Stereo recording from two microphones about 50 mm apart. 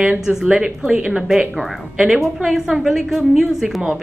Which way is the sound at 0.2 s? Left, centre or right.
Centre.